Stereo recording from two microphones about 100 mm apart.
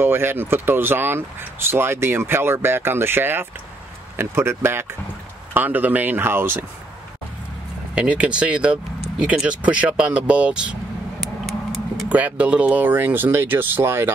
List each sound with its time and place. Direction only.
0.0 s speech: 25° right (ahead or behind)
7.9 s speech: 10° right (ahead or behind)
9.2 s vehicle: 10° right (ahead or behind)
12.1 s speech: 15° right (ahead or behind)